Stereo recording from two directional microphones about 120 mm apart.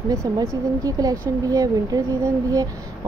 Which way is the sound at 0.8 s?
30° right (ahead or behind).